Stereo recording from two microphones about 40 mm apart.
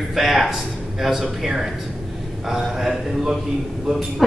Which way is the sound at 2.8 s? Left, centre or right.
Centre.